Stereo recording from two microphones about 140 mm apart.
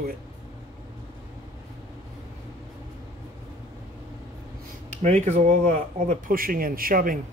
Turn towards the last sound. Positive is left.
turn(degrees=-90)